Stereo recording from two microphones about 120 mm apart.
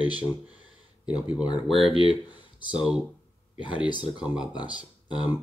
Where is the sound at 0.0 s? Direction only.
40° left (ahead or behind).